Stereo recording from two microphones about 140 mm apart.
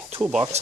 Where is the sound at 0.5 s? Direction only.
50° right (ahead or behind).